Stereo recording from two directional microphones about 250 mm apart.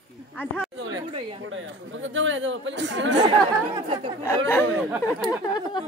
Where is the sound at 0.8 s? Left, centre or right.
Right.